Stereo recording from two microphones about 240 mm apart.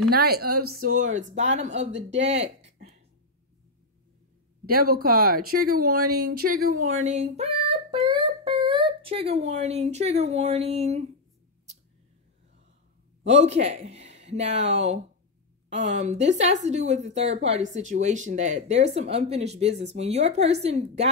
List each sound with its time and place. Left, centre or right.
0.1 s speech: right
2.2 s a sound: right
4.6 s speech: right
5.9 s speech: right
6.3 s speech: right
13.4 s speech: right
14.1 s a sound: right
14.7 s speech: right